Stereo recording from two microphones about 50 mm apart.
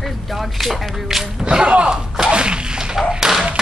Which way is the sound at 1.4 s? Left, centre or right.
Right.